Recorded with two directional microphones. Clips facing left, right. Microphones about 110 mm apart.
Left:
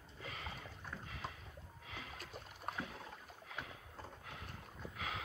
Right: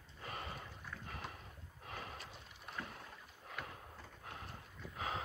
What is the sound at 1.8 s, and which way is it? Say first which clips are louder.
Rowboat: right 4 dB; 45° right (ahead or behind).